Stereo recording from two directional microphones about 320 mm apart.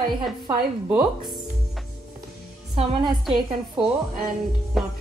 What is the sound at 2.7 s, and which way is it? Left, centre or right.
Speech, centre.